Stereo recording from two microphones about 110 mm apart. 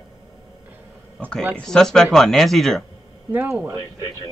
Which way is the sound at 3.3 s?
20° right (ahead or behind).